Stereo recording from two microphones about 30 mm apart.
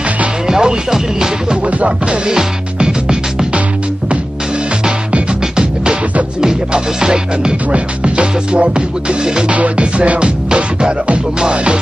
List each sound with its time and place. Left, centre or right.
0.5 s music: right
0.9 s speech: centre
2.2 s music: right
6.7 s music: right
7.7 s music: right
9.5 s music: right
10.2 s music: right